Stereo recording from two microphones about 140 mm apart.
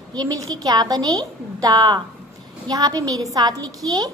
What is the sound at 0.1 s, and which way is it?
A woman's voice, 25° right (ahead or behind).